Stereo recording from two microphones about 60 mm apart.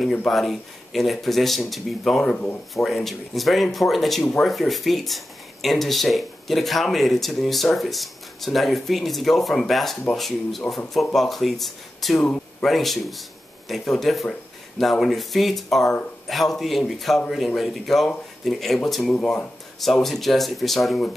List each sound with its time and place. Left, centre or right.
0.3 s speech: centre
19.1 s speech: left
19.8 s speech: centre